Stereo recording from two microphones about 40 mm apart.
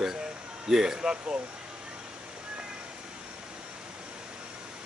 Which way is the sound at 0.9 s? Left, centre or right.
Right.